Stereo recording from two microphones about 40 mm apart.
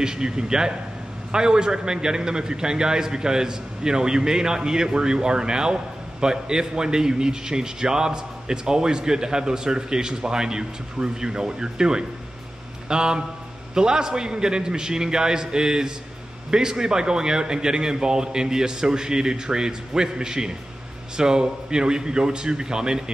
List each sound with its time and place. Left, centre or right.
0.0 s a man's voice: centre